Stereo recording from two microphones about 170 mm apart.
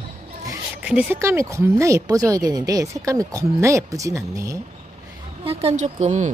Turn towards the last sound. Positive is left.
turn(degrees=-45)  # may be behind; listen again after turning